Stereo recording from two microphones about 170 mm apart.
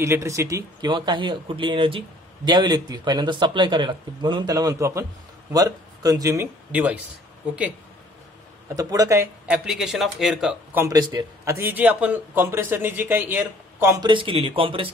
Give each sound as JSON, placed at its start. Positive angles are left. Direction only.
{"t": 0.0, "sound": "speech", "side_deg": -15}
{"t": 8.6, "sound": "speech", "side_deg": -20}
{"t": 9.5, "sound": "a man's voice", "side_deg": 0}
{"t": 11.0, "sound": "speech", "side_deg": -25}
{"t": 11.5, "sound": "a man's voice", "side_deg": -10}
{"t": 14.0, "sound": "speech", "side_deg": -30}